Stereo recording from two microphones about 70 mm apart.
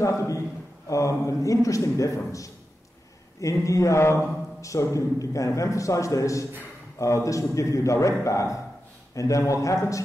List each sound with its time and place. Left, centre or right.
0.0 s a man's voice: left